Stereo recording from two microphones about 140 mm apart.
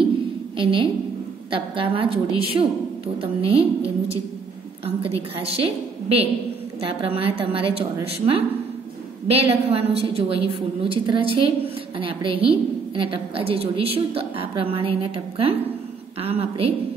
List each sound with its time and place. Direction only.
0.6 s a woman's voice: 40° right (ahead or behind)